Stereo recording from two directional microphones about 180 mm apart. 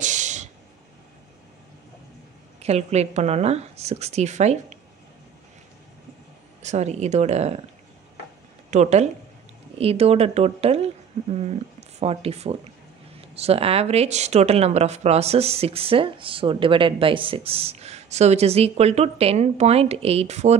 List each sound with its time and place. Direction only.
0.0 s a sound: 40° right (ahead or behind)
2.6 s speech: 35° right (ahead or behind)
6.6 s speech: 40° right (ahead or behind)
8.6 s speech: 40° right (ahead or behind)
12.0 s speech: 35° right (ahead or behind)